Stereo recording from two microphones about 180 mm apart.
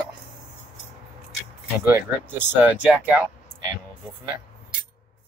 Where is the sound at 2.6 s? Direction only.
5° right (ahead or behind).